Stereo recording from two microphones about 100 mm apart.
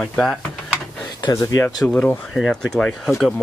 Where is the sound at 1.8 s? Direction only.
15° left (ahead or behind).